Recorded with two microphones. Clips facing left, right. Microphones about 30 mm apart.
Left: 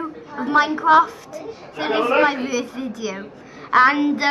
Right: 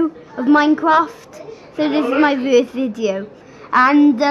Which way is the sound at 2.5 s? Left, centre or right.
Right.